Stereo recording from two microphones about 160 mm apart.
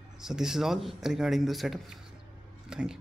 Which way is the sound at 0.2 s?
5° right (ahead or behind).